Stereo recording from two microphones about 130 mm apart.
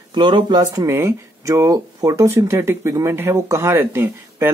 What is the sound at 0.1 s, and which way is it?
Speech, 35° right (ahead or behind).